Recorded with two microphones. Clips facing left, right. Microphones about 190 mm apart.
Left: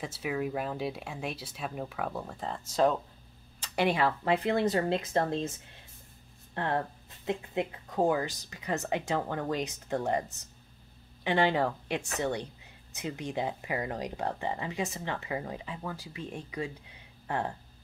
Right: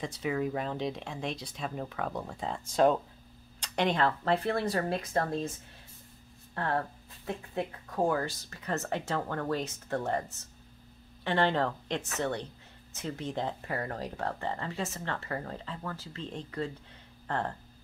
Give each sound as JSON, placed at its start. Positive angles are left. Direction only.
{"t": 0.0, "sound": "speech", "side_deg": 5}
{"t": 6.5, "sound": "speech", "side_deg": 20}